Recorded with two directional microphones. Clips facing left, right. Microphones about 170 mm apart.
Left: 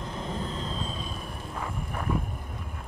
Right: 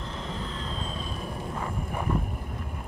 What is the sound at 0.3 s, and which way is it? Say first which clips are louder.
Vehicle: left 3 dB; 40° left (ahead or behind).